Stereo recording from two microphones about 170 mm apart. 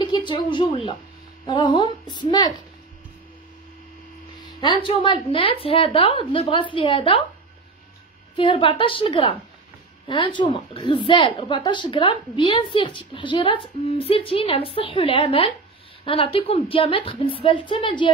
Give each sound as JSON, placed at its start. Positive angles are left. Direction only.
{"t": 0.0, "sound": "a woman's voice", "side_deg": 25}
{"t": 4.6, "sound": "a woman's voice", "side_deg": 30}
{"t": 8.4, "sound": "a woman's voice", "side_deg": 30}